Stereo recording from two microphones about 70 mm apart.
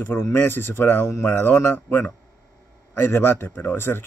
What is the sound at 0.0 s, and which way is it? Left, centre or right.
A man's voice, left.